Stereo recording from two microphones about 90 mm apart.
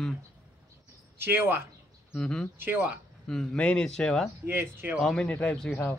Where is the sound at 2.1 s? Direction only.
10° left (ahead or behind).